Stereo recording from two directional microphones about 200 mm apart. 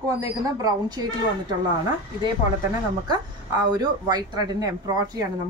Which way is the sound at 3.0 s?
20° right (ahead or behind).